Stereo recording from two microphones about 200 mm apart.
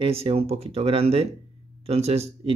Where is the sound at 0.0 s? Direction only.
30° right (ahead or behind).